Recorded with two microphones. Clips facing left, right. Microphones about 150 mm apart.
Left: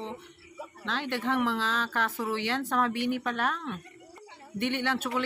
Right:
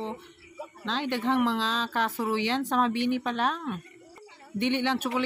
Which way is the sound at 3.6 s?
10° right (ahead or behind).